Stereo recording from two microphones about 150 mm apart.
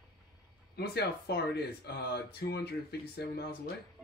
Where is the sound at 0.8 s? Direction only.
90° left.